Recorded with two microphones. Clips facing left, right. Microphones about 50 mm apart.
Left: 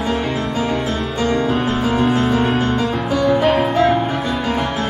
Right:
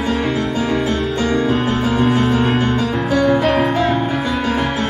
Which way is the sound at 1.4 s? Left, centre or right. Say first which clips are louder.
Right 1 dB; centre.